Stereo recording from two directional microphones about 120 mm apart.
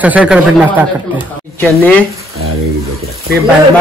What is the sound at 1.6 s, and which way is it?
Speech, 15° left (ahead or behind).